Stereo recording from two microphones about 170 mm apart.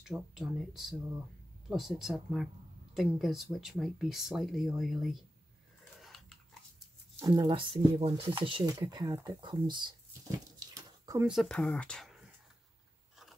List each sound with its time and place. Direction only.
0.0 s speech: centre (ahead or behind)
5.9 s dog: centre (ahead or behind)
7.2 s speech: 20° right (ahead or behind)
10.6 s a sound: 20° right (ahead or behind)
11.2 s speech: centre (ahead or behind)